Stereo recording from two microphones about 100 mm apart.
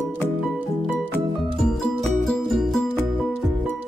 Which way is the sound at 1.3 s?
5° left (ahead or behind).